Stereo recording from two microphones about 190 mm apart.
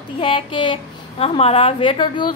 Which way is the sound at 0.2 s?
25° left (ahead or behind).